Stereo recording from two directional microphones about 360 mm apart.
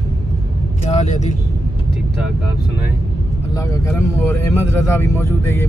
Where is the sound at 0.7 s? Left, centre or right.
Centre.